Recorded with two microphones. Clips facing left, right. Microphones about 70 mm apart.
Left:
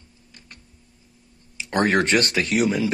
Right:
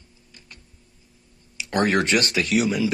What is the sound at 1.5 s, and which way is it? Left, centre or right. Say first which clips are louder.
Speech: left 1 dB; left.